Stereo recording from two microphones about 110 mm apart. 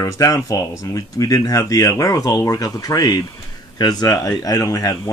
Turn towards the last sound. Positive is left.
turn(degrees=30)  # may be behind; listen again after turning